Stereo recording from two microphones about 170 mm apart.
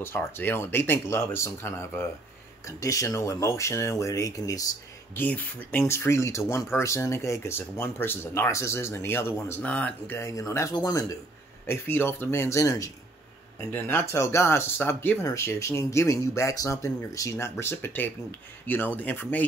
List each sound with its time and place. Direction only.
0.0 s speech: 10° left (ahead or behind)